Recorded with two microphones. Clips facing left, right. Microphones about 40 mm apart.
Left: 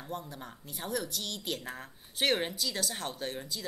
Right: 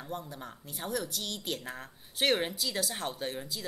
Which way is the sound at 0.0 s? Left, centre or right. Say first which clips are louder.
Right 1 dB; centre.